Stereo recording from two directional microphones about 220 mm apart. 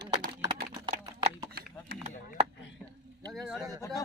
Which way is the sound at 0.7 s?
20° right (ahead or behind).